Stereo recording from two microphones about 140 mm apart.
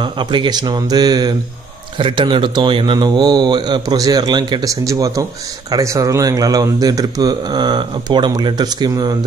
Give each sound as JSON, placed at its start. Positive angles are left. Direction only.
{"t": 0.0, "sound": "a man's voice", "side_deg": -35}